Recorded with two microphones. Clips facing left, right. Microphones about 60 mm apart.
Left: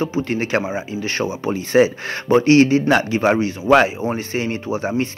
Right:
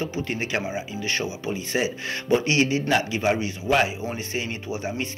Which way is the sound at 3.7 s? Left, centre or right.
Left.